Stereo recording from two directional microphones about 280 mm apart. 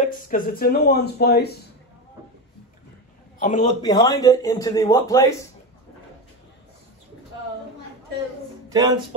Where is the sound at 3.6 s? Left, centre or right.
Centre.